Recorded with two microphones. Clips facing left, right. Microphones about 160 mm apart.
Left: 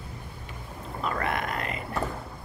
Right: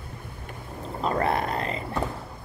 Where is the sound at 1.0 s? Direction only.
30° right (ahead or behind).